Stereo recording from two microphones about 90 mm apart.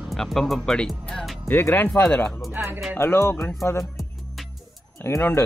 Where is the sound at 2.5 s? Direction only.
25° right (ahead or behind).